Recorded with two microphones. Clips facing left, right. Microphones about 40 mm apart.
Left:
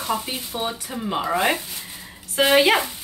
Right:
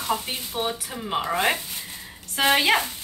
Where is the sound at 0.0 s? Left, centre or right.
Centre.